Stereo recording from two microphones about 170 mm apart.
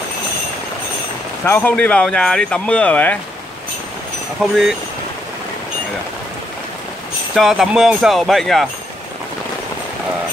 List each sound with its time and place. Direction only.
1.4 s speech: 10° left (ahead or behind)
4.4 s speech: 5° right (ahead or behind)
7.3 s speech: centre (ahead or behind)